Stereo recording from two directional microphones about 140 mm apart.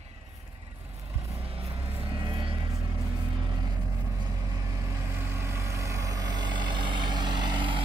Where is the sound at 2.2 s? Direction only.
35° right (ahead or behind).